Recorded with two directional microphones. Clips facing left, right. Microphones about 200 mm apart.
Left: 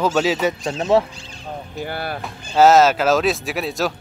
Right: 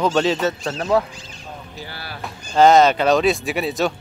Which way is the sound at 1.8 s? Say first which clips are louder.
Left 11 dB; 55° left (ahead or behind).